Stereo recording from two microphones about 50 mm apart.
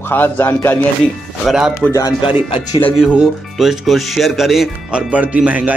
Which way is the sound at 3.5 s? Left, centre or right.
Centre.